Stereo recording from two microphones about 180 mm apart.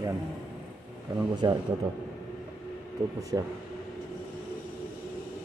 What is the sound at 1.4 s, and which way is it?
Speech, 25° right (ahead or behind).